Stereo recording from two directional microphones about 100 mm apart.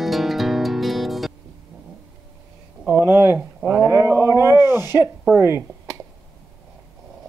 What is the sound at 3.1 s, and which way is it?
Speech, 25° right (ahead or behind).